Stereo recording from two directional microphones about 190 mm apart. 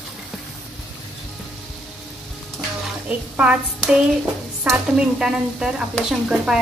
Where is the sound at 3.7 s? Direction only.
Centre (ahead or behind).